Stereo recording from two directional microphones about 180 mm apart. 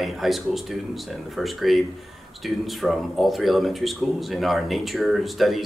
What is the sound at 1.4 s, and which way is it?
Speech, centre (ahead or behind).